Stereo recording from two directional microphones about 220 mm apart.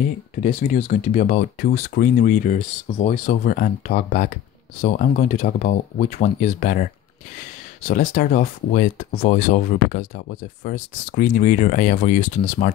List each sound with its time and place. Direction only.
0.4 s speech: 35° left (ahead or behind)
8.1 s speech: 40° left (ahead or behind)